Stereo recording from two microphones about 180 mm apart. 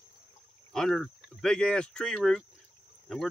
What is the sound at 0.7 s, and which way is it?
Speech, centre (ahead or behind).